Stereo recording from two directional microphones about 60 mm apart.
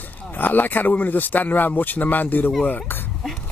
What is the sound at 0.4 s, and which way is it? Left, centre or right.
Speech, left.